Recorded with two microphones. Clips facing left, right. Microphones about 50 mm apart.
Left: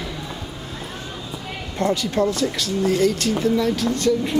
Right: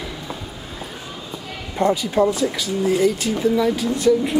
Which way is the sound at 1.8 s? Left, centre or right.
Centre.